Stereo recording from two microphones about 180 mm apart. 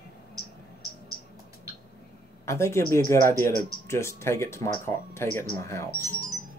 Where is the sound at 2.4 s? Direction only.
15° left (ahead or behind).